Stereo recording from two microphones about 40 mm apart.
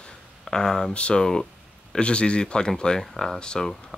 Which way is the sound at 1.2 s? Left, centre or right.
Centre.